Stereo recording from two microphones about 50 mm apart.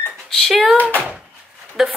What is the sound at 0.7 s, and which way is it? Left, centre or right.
Speech, right.